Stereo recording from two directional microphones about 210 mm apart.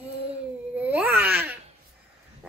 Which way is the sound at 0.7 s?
10° right (ahead or behind).